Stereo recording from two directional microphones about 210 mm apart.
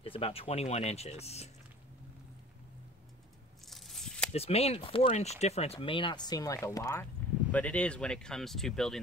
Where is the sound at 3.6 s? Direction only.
Centre (ahead or behind).